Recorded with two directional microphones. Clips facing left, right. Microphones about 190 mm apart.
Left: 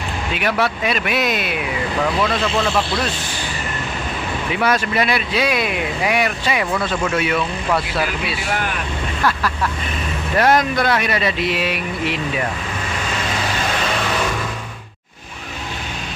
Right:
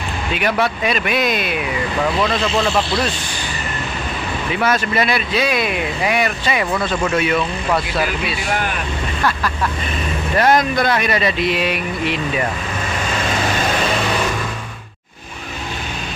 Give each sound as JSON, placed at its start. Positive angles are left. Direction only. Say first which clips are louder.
{"t": 0.3, "sound": "speech", "louder": "right 1 dB", "side_deg": 0}
{"t": 2.4, "sound": "speech", "louder": "right 1 dB", "side_deg": -15}
{"t": 4.5, "sound": "speech", "louder": "even", "side_deg": 10}
{"t": 10.3, "sound": "speech", "louder": "right 1 dB", "side_deg": 0}